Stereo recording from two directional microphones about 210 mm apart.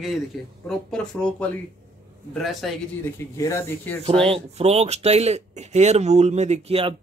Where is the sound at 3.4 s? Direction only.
15° left (ahead or behind).